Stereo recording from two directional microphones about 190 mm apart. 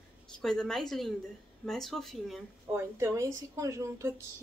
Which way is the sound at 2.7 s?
15° right (ahead or behind).